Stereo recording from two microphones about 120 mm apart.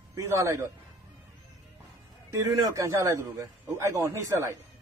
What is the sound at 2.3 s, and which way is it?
Speech, 30° right (ahead or behind).